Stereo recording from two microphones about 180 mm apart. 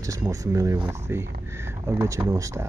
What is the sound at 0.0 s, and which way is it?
Speech, 20° right (ahead or behind).